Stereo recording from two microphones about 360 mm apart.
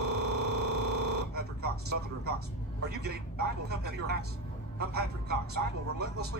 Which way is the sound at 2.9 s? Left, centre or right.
Right.